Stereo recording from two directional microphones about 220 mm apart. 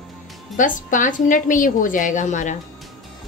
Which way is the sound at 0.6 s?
35° left (ahead or behind).